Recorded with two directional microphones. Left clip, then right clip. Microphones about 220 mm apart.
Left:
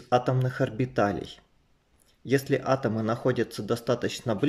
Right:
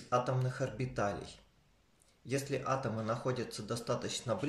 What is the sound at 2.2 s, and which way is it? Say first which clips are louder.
Speech: left 10 dB; 35° left (ahead or behind).